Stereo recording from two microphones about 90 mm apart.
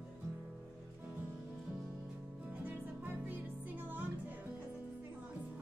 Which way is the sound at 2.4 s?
15° right (ahead or behind).